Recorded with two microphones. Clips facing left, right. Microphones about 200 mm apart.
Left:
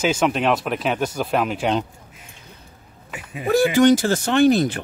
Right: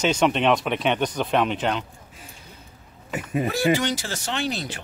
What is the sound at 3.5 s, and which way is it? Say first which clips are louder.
Speech: left 10 dB; 50° left (ahead or behind).